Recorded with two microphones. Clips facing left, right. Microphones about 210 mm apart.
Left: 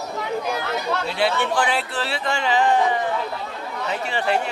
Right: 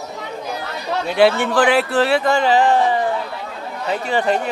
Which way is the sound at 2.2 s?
40° right (ahead or behind).